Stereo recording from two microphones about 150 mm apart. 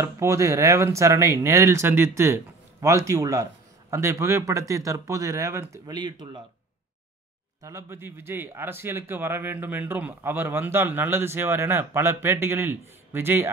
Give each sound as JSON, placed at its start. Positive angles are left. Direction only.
{"t": 0.0, "sound": "speech", "side_deg": -20}
{"t": 7.6, "sound": "a man's voice", "side_deg": -20}